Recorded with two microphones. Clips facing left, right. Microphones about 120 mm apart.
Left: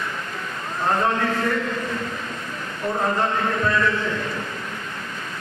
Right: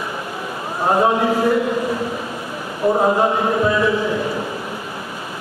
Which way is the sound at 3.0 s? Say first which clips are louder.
Right 6 dB; 15° right (ahead or behind).